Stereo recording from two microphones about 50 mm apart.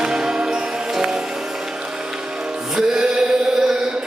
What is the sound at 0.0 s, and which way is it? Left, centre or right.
Music, centre.